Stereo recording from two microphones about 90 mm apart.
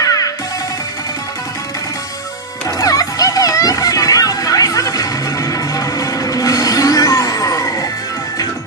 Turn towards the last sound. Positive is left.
turn(degrees=35)  # may be behind; listen again after turning